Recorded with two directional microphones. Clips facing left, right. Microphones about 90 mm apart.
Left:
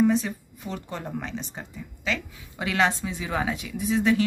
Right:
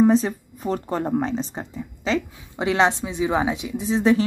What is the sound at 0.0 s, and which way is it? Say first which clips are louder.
Speech: right 5 dB; 35° right (ahead or behind).